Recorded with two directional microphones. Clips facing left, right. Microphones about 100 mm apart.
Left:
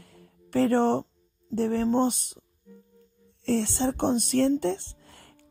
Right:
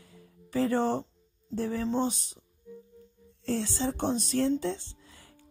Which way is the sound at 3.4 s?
65° left (ahead or behind).